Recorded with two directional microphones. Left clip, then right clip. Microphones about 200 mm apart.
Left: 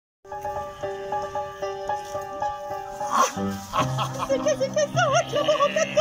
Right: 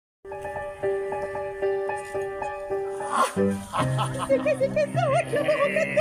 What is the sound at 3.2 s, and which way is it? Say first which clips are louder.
Speech: right 3 dB; centre (ahead or behind).